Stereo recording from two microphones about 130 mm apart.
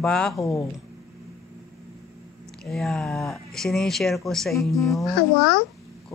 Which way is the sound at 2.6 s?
5° left (ahead or behind).